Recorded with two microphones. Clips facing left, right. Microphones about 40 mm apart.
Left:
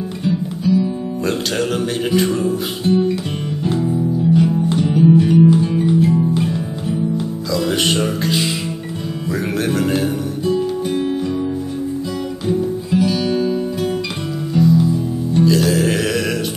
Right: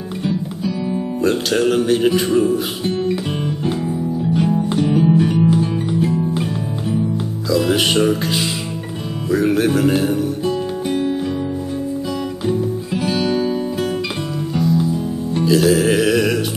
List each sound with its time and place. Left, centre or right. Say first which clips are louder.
0.2 s music: left 2 dB; centre
1.2 s speech: right 4 dB; centre
2.8 s music: left 3 dB; centre
7.4 s speech: right 3 dB; centre
10.4 s music: left 2 dB; right
11.1 s music: left 1 dB; centre
13.0 s music: right 1 dB; right
14.5 s music: left 4 dB; centre